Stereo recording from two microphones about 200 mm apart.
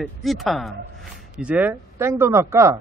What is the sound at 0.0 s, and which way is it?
A man's voice, centre (ahead or behind).